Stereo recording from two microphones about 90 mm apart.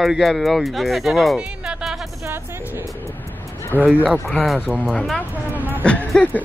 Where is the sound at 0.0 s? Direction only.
Centre (ahead or behind).